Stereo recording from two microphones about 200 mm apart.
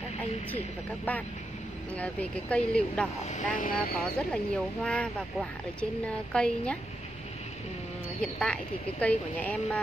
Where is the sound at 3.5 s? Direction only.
40° left (ahead or behind).